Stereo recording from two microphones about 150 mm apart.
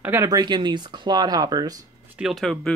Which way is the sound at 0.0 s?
20° right (ahead or behind).